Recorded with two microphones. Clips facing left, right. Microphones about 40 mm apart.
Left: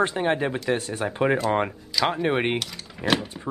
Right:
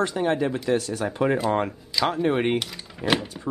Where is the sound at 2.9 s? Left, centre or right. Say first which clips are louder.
Even; centre.